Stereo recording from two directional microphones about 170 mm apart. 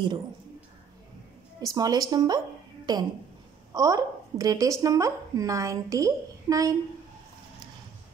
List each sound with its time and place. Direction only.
1.6 s speech: 20° right (ahead or behind)